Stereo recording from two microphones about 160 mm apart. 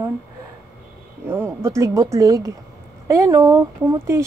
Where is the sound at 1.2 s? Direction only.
15° right (ahead or behind).